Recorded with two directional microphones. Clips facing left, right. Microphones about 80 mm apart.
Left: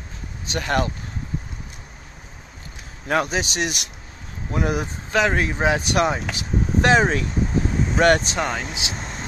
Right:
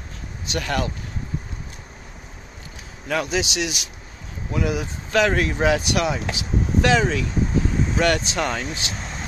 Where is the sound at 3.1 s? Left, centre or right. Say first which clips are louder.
Left 1 dB; left.